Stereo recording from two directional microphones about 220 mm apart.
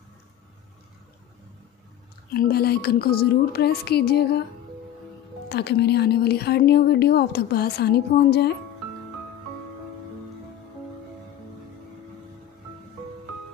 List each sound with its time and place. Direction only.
2.3 s a woman's voice: 45° left (ahead or behind)
5.5 s a woman's voice: 50° left (ahead or behind)